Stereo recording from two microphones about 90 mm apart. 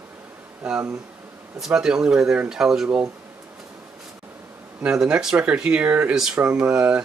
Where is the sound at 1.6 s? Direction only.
10° right (ahead or behind).